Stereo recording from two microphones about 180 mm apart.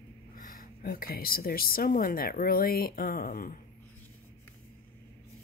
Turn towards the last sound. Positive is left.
turn(degrees=55)  # may be behind; listen again after turning